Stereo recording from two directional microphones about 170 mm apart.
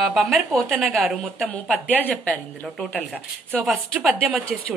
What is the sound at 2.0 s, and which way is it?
A woman's voice, 5° left (ahead or behind).